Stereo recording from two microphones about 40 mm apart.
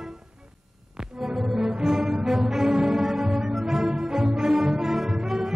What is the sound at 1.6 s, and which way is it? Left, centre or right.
Music, centre.